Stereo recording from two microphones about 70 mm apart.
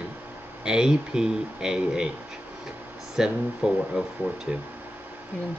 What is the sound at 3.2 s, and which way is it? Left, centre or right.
Speech, centre.